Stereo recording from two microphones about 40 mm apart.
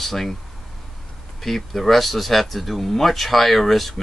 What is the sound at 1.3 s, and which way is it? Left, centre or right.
Speech, centre.